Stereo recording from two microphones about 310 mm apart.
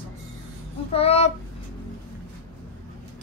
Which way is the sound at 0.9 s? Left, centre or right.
Centre.